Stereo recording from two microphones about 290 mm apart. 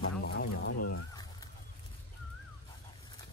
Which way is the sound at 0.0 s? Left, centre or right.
Left.